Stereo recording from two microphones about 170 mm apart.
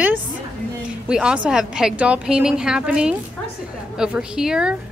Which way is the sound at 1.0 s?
5° right (ahead or behind).